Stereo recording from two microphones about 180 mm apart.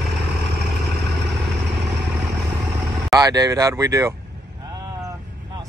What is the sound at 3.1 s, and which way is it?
Speech, 20° right (ahead or behind).